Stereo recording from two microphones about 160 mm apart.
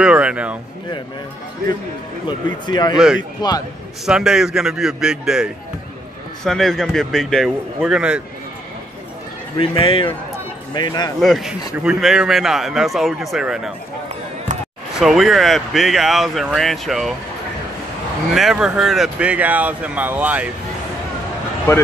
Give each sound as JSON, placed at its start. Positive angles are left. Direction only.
{"t": 0.0, "sound": "speech", "side_deg": -5}
{"t": 2.2, "sound": "speech", "side_deg": 25}
{"t": 4.0, "sound": "speech", "side_deg": -5}
{"t": 9.6, "sound": "speech", "side_deg": 35}
{"t": 11.1, "sound": "speech", "side_deg": 0}
{"t": 15.0, "sound": "speech", "side_deg": 0}
{"t": 18.3, "sound": "speech", "side_deg": 0}